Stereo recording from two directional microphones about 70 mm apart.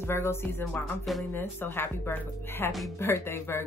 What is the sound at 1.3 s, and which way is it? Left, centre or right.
Speech, left.